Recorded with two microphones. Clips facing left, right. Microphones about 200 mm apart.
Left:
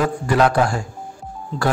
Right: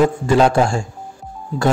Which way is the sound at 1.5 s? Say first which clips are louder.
Right 4 dB; 10° right (ahead or behind).